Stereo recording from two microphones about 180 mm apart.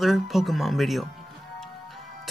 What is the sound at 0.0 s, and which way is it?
Speech, centre (ahead or behind).